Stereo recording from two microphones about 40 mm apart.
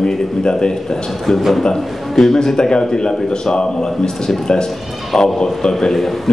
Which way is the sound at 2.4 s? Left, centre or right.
Centre.